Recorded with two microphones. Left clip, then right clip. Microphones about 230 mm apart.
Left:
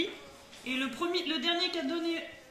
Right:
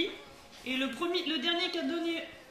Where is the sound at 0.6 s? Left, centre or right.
Centre.